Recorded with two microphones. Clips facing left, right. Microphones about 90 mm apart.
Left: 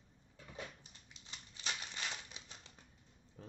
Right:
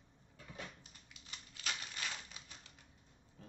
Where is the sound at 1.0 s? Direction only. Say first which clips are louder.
Even; 25° left (ahead or behind).